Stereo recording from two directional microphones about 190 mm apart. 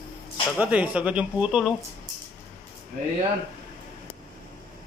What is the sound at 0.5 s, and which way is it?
Speech, 5° right (ahead or behind).